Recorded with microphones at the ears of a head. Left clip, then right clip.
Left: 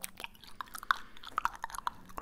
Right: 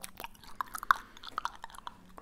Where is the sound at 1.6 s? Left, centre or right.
Left.